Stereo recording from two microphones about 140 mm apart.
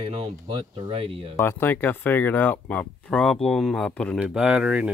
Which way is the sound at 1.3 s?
15° left (ahead or behind).